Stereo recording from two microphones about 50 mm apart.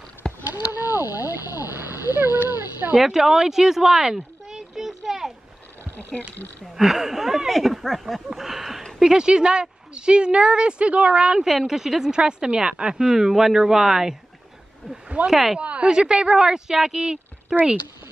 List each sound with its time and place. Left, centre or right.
0.4 s speech: right
3.0 s speech: centre
4.1 s a sound: centre
6.8 s speech: centre
8.4 s a sound: centre
9.0 s a woman's voice: centre
11.4 s speech: centre
15.2 s speech: centre
15.6 s speech: right